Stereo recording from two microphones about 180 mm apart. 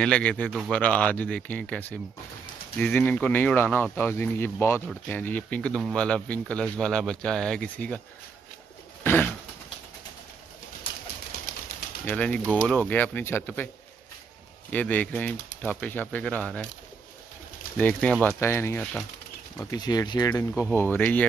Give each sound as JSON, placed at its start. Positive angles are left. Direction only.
{"t": 0.0, "sound": "speech", "side_deg": 5}
{"t": 9.0, "sound": "bird", "side_deg": 10}
{"t": 12.0, "sound": "speech", "side_deg": 10}
{"t": 14.7, "sound": "speech", "side_deg": 10}
{"t": 17.7, "sound": "speech", "side_deg": 10}